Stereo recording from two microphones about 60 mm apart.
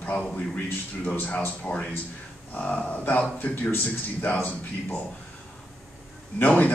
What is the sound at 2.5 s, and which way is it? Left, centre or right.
Speech, left.